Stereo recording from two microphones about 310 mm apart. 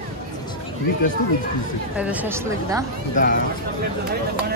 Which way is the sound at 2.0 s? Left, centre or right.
Centre.